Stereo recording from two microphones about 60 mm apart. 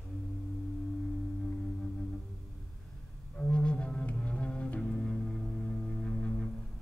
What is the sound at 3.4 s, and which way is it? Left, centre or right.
Cello, centre.